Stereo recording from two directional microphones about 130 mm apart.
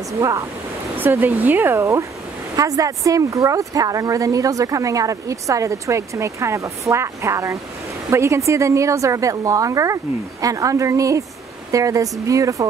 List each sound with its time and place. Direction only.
0.2 s speech: 25° right (ahead or behind)